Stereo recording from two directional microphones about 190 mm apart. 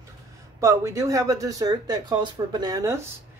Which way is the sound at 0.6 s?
15° right (ahead or behind).